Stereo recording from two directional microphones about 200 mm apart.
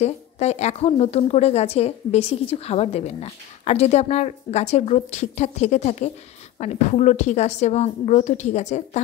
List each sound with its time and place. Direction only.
0.0 s a woman's voice: 35° left (ahead or behind)